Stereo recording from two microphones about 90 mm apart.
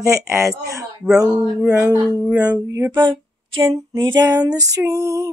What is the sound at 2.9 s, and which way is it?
Female singing, 65° right (ahead or behind).